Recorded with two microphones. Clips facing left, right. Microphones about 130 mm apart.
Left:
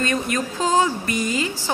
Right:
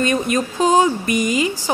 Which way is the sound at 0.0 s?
20° right (ahead or behind).